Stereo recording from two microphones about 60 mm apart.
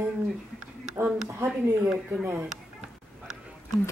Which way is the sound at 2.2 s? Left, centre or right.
Right.